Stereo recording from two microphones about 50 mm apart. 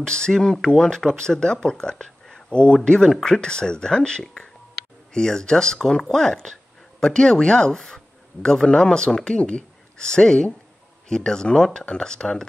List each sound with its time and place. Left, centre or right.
0.0 s speech: centre